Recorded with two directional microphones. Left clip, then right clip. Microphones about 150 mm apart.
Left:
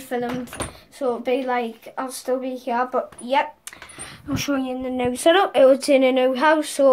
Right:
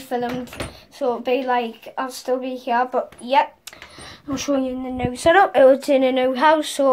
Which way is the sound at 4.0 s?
35° left (ahead or behind).